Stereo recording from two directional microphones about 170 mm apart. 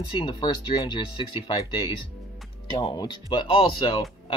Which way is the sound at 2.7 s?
25° left (ahead or behind).